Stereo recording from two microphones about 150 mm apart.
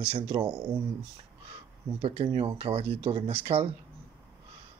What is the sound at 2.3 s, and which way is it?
Speech, 40° right (ahead or behind).